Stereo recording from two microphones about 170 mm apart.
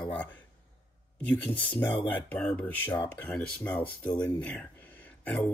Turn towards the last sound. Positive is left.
turn(degrees=5)  # may be behind; listen again after turning